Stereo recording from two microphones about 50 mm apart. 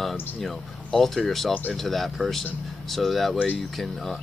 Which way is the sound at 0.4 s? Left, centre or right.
Centre.